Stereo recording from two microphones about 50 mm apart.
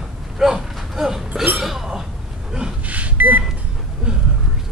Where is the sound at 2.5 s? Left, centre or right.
Centre.